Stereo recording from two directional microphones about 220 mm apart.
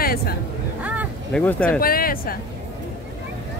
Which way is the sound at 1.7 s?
40° left (ahead or behind).